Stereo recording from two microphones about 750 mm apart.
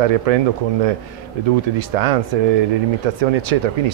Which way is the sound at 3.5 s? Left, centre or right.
Right.